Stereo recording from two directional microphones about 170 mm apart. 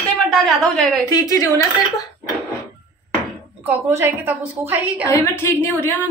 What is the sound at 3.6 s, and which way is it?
A woman's voice, 15° right (ahead or behind).